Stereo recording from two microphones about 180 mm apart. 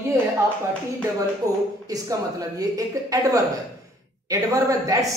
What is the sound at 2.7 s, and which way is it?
A woman's voice, 20° right (ahead or behind).